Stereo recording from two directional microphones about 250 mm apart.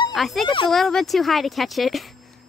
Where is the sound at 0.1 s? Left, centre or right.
Centre.